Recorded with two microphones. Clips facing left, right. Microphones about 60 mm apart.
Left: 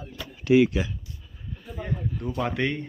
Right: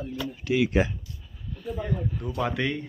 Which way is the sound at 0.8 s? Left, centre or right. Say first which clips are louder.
Right 5 dB; right.